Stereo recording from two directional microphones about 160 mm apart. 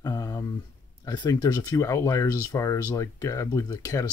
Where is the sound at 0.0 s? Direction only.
25° left (ahead or behind).